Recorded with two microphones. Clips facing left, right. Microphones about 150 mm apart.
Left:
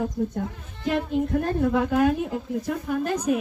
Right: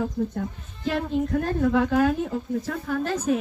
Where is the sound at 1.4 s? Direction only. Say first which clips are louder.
Right 1 dB; 20° left (ahead or behind).